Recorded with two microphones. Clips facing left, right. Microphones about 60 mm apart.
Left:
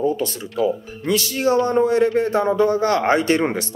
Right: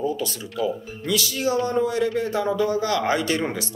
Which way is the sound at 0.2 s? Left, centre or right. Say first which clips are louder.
Left 5 dB; left.